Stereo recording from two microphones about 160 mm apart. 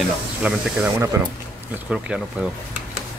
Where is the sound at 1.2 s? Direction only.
15° right (ahead or behind).